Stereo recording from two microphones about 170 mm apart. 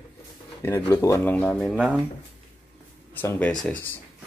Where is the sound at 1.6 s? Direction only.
5° right (ahead or behind).